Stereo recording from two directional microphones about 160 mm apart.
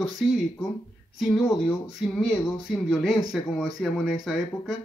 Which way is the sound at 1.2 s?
Centre (ahead or behind).